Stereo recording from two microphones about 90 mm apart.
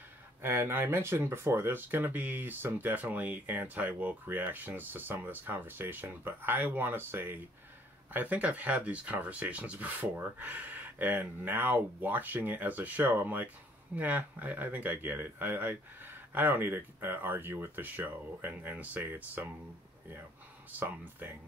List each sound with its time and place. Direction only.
0.4 s speech: 25° right (ahead or behind)
20.7 s speech: 25° right (ahead or behind)